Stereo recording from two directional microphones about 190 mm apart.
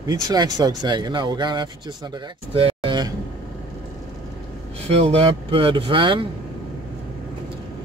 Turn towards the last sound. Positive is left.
turn(degrees=-25)  # may be behind; listen again after turning